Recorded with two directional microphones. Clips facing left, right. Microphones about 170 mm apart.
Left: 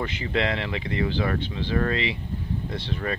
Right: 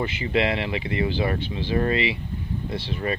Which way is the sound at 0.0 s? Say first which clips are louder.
Right 3 dB; 10° right (ahead or behind).